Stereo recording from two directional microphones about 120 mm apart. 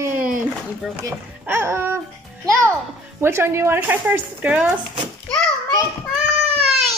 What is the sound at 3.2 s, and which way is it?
Speech, 20° right (ahead or behind).